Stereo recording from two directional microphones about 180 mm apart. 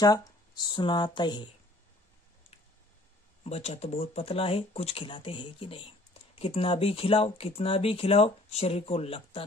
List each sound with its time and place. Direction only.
0.0 s speech: 20° left (ahead or behind)
3.4 s speech: 35° left (ahead or behind)